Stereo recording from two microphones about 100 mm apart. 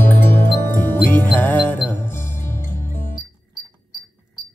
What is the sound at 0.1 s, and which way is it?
Music, 20° left (ahead or behind).